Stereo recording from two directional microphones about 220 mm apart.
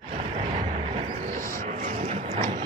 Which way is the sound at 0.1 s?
30° right (ahead or behind).